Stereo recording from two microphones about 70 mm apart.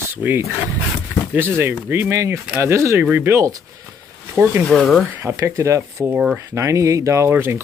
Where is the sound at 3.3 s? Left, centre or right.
Right.